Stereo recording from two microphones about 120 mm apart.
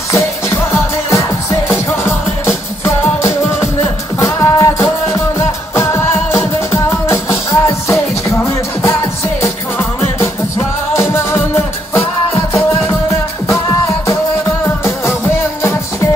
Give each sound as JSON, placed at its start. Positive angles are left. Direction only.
{"t": 1.1, "sound": "music", "side_deg": 25}
{"t": 9.4, "sound": "music", "side_deg": 25}
{"t": 14.6, "sound": "music", "side_deg": 20}